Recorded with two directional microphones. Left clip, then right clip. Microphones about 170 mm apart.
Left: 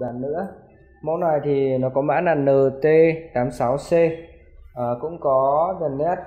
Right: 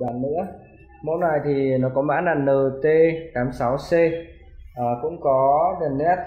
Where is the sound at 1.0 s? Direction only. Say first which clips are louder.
Left 1 dB; 35° left (ahead or behind).